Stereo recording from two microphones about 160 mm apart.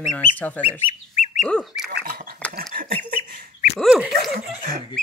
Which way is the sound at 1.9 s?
65° right (ahead or behind).